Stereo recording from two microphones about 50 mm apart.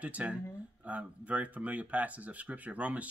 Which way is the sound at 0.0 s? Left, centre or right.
Right.